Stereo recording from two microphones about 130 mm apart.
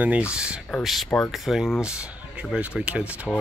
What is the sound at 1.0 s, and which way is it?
Speech, 10° left (ahead or behind).